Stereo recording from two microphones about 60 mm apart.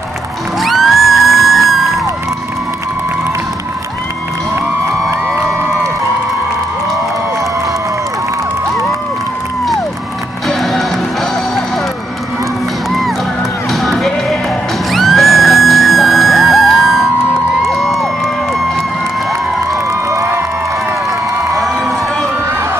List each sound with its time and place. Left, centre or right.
0.6 s music: centre
10.6 s music: centre
13.7 s music: centre
19.7 s a sound: right